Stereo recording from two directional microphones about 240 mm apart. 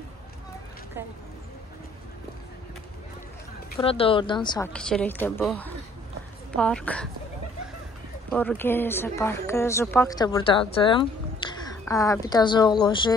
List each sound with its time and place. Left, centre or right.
3.8 s speech: left
4.7 s speech: centre
8.3 s a woman's voice: centre